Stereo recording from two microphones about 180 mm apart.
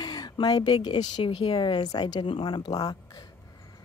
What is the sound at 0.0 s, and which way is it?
A woman's voice, 25° left (ahead or behind).